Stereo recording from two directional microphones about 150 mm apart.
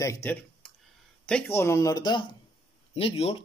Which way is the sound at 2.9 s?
40° left (ahead or behind).